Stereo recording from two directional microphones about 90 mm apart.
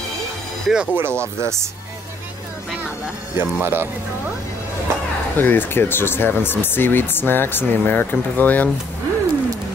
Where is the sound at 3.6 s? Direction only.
25° right (ahead or behind).